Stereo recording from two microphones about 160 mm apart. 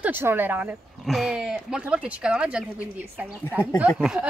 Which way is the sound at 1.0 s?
Centre (ahead or behind).